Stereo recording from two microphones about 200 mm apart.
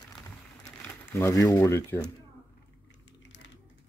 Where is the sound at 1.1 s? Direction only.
15° left (ahead or behind).